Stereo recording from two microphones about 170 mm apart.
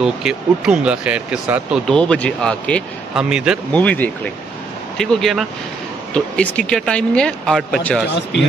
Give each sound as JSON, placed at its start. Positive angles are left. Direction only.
{"t": 0.0, "sound": "speech", "side_deg": -5}
{"t": 2.0, "sound": "speech", "side_deg": 5}
{"t": 3.2, "sound": "speech", "side_deg": -5}
{"t": 3.7, "sound": "speech", "side_deg": 10}
{"t": 8.1, "sound": "speech", "side_deg": 90}